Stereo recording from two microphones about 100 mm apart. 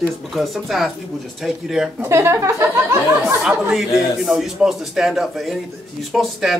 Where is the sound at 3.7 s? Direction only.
5° right (ahead or behind).